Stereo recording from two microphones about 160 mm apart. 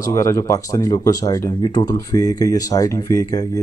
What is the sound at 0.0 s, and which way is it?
Speech, 20° left (ahead or behind).